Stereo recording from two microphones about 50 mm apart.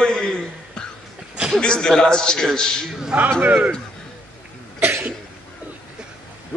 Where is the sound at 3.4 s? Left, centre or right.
Right.